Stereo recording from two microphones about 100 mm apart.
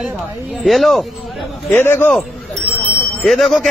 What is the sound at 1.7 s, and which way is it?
Speech, 20° left (ahead or behind).